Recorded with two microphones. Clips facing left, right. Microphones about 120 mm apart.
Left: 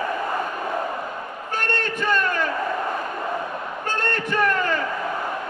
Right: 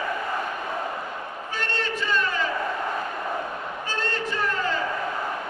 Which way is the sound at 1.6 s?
50° left (ahead or behind).